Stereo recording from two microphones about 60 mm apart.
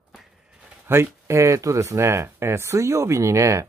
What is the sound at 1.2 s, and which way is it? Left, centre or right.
Speech, right.